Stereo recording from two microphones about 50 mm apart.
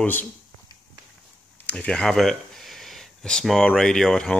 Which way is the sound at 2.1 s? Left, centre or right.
Centre.